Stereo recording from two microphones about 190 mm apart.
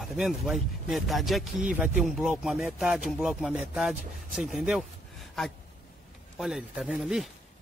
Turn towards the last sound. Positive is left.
turn(degrees=0)  # may be behind; listen again after turning